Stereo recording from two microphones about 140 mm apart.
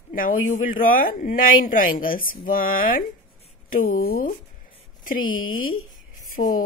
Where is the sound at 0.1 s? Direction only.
80° left.